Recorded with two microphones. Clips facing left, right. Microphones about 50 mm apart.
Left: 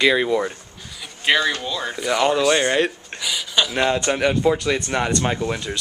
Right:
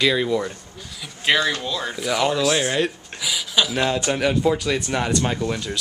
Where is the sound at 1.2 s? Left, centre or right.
Centre.